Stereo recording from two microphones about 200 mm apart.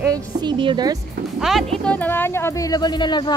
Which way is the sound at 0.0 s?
20° right (ahead or behind).